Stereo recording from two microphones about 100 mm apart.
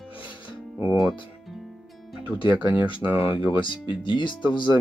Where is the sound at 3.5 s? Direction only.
55° left (ahead or behind).